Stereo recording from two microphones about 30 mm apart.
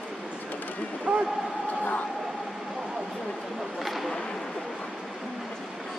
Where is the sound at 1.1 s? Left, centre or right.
Right.